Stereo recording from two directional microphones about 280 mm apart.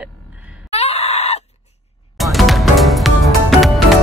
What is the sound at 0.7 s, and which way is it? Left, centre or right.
Groan, left.